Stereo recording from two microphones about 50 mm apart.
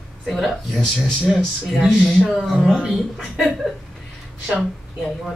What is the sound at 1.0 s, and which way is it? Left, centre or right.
Speech, centre.